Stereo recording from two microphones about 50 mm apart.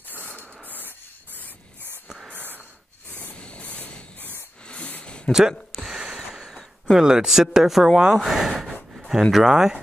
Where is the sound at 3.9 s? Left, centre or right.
Left.